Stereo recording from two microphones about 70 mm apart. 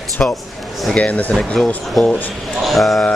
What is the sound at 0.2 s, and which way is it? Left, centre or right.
Speech, centre.